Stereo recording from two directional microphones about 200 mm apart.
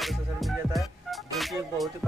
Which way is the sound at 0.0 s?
Centre (ahead or behind).